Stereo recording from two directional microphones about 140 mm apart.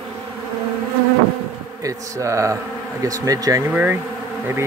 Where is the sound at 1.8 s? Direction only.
20° right (ahead or behind).